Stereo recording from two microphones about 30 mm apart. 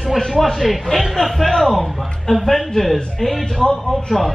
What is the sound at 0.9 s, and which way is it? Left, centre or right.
Speech, left.